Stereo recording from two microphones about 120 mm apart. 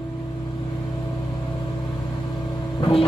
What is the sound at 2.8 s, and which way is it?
Vehicle, 50° left (ahead or behind).